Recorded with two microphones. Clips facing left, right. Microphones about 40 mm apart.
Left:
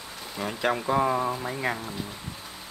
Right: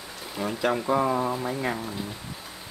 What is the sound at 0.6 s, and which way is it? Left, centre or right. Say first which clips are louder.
Speech: even; centre.